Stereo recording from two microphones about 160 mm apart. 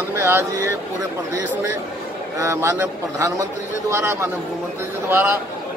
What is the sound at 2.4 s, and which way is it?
A man's voice, 20° right (ahead or behind).